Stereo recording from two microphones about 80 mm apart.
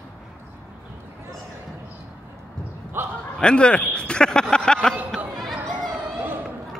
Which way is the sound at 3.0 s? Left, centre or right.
Right.